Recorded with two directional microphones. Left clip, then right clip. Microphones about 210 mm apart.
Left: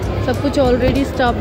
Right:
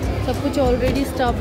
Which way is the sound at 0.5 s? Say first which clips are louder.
Left 4 dB; 5° right (ahead or behind).